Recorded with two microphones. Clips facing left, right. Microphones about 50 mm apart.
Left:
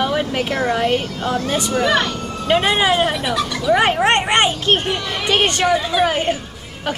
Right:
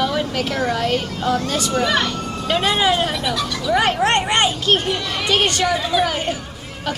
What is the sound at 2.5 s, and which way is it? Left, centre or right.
A woman's voice, left.